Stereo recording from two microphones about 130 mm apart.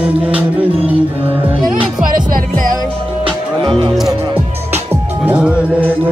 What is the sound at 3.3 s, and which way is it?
Music, 40° right (ahead or behind).